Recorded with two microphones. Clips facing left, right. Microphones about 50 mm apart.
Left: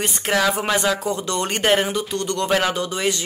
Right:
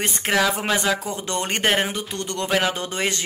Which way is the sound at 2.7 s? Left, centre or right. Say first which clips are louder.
Left 3 dB; right.